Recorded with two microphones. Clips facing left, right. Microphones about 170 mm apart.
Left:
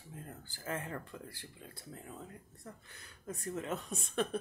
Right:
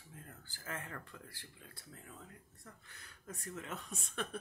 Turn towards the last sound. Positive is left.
turn(degrees=20)  # may be behind; listen again after turning